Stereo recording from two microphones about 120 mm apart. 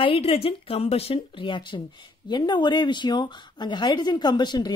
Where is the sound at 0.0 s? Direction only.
50° left (ahead or behind).